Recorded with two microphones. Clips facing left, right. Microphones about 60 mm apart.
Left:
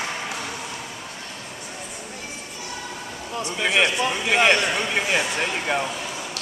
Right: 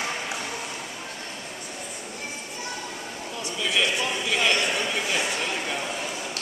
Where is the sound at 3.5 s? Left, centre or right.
Left.